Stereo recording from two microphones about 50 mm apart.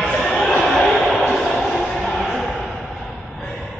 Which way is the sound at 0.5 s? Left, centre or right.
Centre.